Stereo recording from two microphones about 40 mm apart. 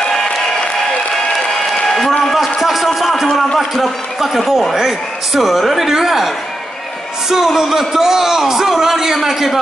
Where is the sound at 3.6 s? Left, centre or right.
Centre.